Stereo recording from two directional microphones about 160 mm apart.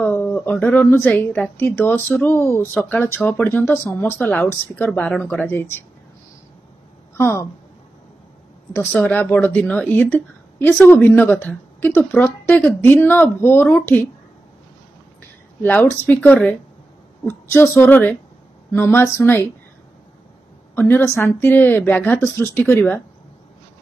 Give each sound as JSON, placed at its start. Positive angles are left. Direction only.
{"t": 0.0, "sound": "speech", "side_deg": 10}
{"t": 1.1, "sound": "a woman's voice", "side_deg": 5}
{"t": 7.2, "sound": "a woman's voice", "side_deg": 15}
{"t": 9.0, "sound": "a woman's voice", "side_deg": 10}
{"t": 15.6, "sound": "a woman's voice", "side_deg": 10}
{"t": 20.9, "sound": "a woman's voice", "side_deg": 15}